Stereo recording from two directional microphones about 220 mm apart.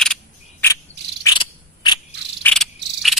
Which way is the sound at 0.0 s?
5° left (ahead or behind).